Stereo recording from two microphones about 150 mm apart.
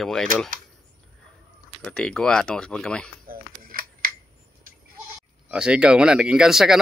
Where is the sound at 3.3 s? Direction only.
70° right (ahead or behind).